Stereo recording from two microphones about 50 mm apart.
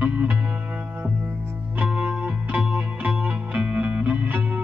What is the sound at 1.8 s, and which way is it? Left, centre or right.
Music, right.